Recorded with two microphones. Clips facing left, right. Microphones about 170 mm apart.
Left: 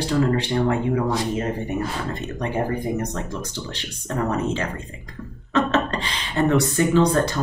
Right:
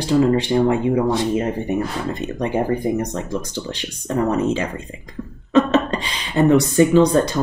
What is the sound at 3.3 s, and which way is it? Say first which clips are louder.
Speech: right 5 dB; 15° right (ahead or behind).